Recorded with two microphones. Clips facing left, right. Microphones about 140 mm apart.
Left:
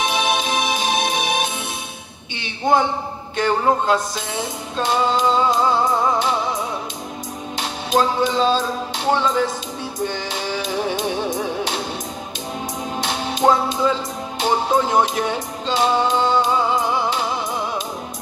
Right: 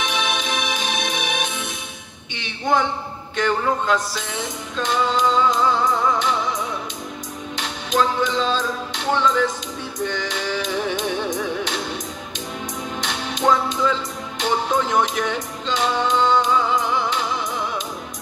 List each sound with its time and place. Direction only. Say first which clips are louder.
0.0 s music: left 4 dB; 35° left (ahead or behind)
3.3 s music: left 3 dB; 35° left (ahead or behind)
7.5 s music: left 2 dB; 35° left (ahead or behind)
13.0 s music: left 3 dB; 35° left (ahead or behind)